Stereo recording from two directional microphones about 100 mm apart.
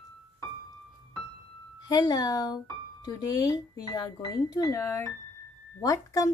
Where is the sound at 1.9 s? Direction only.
45° left (ahead or behind).